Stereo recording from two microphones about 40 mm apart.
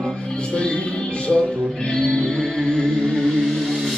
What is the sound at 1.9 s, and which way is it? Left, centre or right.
Music, centre.